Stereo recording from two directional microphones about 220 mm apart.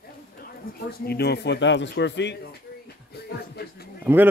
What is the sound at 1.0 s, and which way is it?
Speech, 45° left (ahead or behind).